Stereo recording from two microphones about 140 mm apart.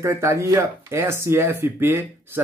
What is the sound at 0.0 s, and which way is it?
Speech, 20° right (ahead or behind).